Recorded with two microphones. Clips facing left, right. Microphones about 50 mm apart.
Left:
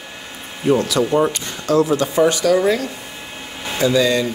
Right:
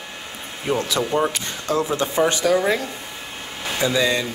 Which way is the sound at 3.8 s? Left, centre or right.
Right.